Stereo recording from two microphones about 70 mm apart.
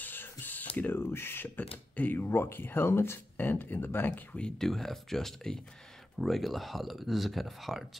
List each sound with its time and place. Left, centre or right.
0.0 s a sound: left
0.9 s speech: left
4.3 s speech: centre